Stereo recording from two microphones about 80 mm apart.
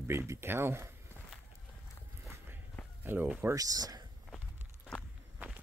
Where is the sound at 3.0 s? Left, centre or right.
Right.